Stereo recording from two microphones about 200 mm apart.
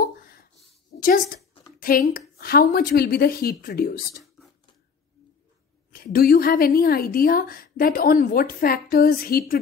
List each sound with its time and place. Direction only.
0.0 s a sound: 50° left (ahead or behind)
0.9 s a woman's voice: 45° left (ahead or behind)
5.9 s a woman's voice: 45° left (ahead or behind)